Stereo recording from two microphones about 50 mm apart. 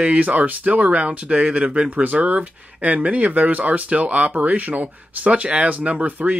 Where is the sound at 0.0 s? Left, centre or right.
Right.